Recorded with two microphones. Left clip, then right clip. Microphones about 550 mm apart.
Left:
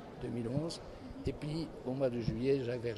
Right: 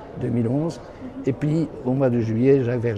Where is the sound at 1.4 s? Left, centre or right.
Right.